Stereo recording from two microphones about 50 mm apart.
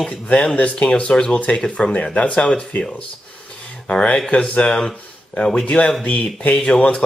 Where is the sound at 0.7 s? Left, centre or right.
Left.